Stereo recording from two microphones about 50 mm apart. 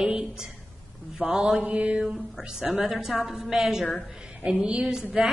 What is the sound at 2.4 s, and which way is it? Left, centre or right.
A woman's voice, centre.